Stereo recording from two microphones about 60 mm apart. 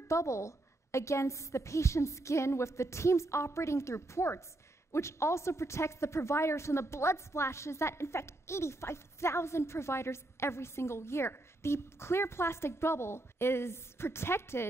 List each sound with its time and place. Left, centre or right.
0.1 s a woman's voice: left